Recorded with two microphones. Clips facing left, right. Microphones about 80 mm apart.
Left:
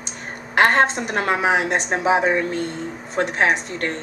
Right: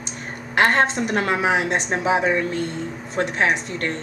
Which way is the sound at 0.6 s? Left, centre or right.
Left.